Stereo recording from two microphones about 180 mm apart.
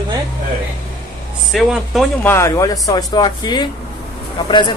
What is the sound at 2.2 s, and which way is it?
Speech, 15° left (ahead or behind).